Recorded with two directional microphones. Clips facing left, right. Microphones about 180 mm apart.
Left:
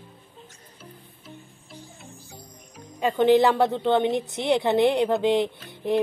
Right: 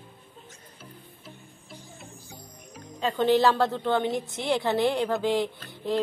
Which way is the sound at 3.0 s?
15° left (ahead or behind).